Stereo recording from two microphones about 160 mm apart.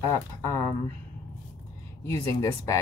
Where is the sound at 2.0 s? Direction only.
15° left (ahead or behind).